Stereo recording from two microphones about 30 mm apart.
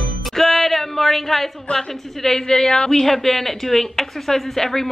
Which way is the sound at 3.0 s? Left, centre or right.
Centre.